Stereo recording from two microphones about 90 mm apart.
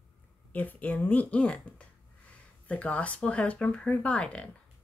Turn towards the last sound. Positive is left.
turn(degrees=10)  # may be behind; listen again after turning